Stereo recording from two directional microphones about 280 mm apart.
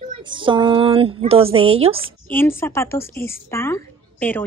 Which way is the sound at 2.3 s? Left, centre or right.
Centre.